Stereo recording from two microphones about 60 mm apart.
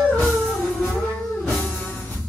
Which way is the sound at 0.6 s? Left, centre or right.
Centre.